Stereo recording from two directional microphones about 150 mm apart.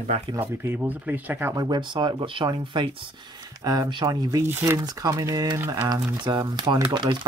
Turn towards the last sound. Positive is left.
turn(degrees=-30)  # may be behind; listen again after turning